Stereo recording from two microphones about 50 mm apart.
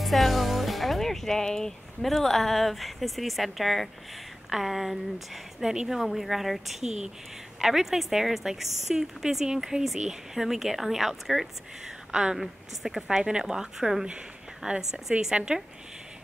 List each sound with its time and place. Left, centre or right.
0.0 s a woman's voice: centre
12.1 s a woman's voice: centre
12.4 s a woman's voice: centre